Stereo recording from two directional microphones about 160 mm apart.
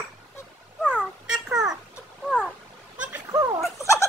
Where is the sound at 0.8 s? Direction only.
5° right (ahead or behind).